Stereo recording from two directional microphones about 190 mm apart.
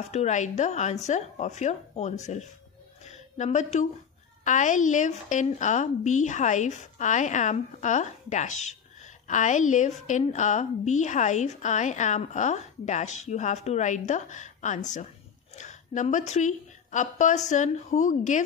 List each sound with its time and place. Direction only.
0.1 s a woman's voice: 35° left (ahead or behind)
3.0 s a sound: 35° left (ahead or behind)
4.5 s a woman's voice: 40° left (ahead or behind)